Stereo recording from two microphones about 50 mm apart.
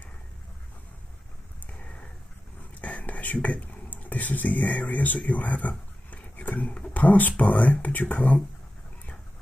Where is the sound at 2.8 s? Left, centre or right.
Left.